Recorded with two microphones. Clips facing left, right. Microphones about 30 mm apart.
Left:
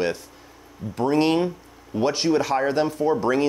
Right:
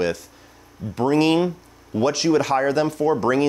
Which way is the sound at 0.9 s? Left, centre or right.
Right.